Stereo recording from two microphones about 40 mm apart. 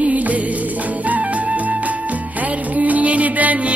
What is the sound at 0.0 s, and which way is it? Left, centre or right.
Music, right.